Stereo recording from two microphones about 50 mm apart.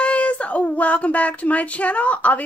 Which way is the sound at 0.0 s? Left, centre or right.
Left.